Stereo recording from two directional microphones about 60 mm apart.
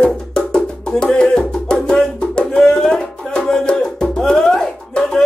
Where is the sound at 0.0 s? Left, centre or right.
Centre.